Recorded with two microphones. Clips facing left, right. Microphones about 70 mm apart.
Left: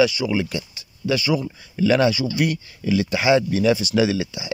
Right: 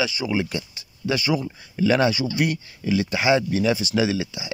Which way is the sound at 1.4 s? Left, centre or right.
Centre.